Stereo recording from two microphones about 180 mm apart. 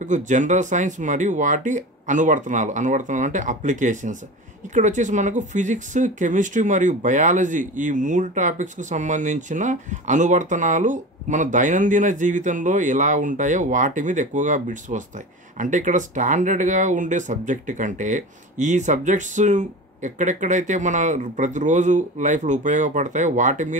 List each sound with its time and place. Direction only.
0.0 s speech: 45° right (ahead or behind)